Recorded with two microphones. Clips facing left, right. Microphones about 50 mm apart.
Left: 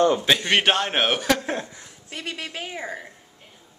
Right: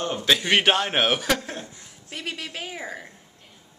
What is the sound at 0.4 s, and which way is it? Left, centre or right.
A woman's voice, centre.